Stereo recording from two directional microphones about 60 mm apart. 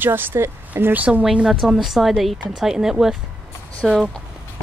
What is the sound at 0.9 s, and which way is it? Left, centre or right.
Speech, right.